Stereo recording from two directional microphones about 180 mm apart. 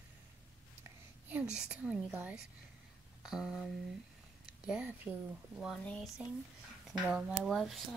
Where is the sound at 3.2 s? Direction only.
5° right (ahead or behind).